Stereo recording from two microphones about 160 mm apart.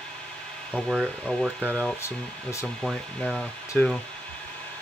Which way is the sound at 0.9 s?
Centre (ahead or behind).